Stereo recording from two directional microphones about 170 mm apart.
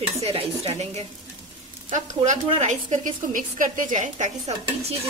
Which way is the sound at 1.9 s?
45° right (ahead or behind).